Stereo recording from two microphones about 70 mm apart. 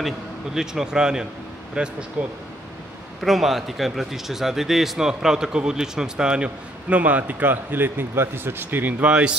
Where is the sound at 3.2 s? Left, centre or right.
Centre.